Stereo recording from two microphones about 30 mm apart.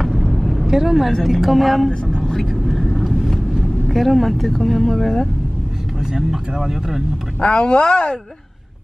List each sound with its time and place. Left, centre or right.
0.0 s vehicle: centre
0.7 s vehicle: centre
1.2 s speech: centre
1.9 s vehicle: left
2.5 s vehicle: centre
3.9 s speech: centre
5.9 s speech: centre
7.3 s speech: left